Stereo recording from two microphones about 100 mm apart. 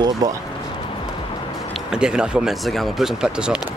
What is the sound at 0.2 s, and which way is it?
Speech, 40° right (ahead or behind).